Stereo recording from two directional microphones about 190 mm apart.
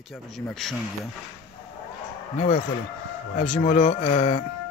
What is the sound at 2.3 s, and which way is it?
Speech, 35° left (ahead or behind).